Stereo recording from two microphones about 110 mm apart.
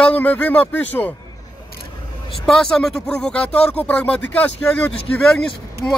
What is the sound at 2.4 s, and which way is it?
Speech, 5° left (ahead or behind).